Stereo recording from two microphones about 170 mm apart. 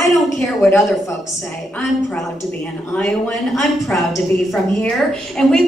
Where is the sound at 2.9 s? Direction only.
10° left (ahead or behind).